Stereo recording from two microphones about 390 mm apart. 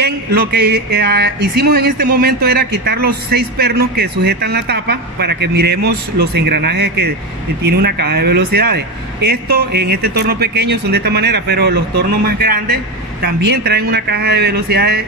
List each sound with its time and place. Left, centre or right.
0.0 s speech: right